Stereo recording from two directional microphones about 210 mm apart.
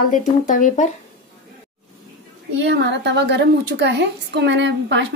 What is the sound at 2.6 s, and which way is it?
A woman's voice, 55° right (ahead or behind).